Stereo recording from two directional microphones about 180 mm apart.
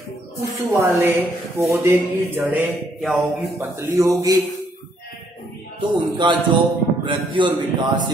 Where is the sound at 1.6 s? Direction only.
15° right (ahead or behind).